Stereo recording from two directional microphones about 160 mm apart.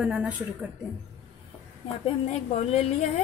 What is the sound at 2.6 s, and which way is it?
Speech, 40° left (ahead or behind).